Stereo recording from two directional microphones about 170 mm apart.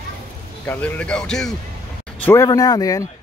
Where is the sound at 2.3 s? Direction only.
20° left (ahead or behind).